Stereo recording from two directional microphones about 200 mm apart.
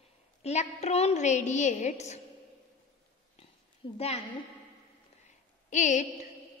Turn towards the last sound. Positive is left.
turn(degrees=35)  # may be behind; listen again after turning